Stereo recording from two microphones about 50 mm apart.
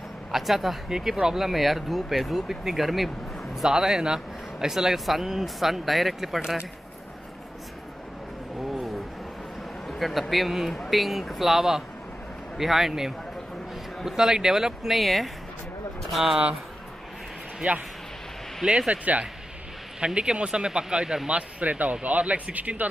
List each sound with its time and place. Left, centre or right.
0.3 s a man's voice: centre
9.8 s a sound: centre
10.3 s a man's voice: centre
17.6 s speech: right
18.7 s a man's voice: centre
20.2 s a man's voice: centre